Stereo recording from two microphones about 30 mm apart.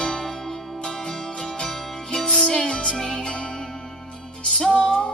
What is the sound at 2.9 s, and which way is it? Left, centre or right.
Music, centre.